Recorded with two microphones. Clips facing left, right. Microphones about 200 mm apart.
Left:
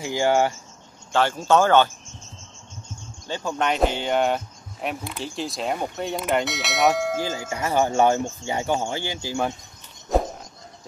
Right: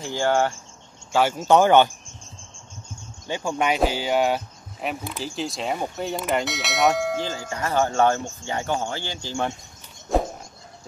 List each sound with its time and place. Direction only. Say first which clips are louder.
0.0 s speech: left 1 dB; 15° left (ahead or behind)
1.1 s speech: right 1 dB; 10° right (ahead or behind)
3.3 s speech: right 1 dB; 15° right (ahead or behind); by 9.5 s 10° left (ahead or behind)